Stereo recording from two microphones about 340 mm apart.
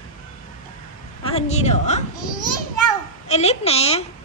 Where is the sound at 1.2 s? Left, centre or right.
Centre.